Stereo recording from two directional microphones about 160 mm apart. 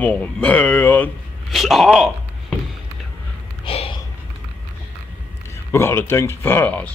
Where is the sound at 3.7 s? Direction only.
35° left (ahead or behind).